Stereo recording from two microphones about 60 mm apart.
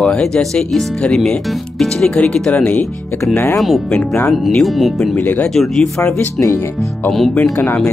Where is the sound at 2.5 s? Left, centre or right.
Left.